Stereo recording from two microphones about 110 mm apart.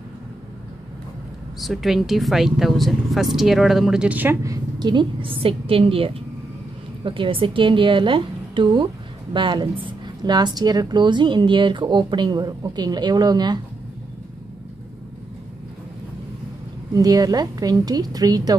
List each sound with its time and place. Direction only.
1.6 s speech: centre (ahead or behind)
4.4 s a woman's voice: 35° right (ahead or behind)
16.9 s a woman's voice: 35° right (ahead or behind)